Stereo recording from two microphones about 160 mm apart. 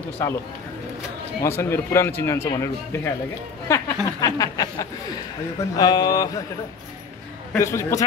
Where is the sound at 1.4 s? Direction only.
15° left (ahead or behind).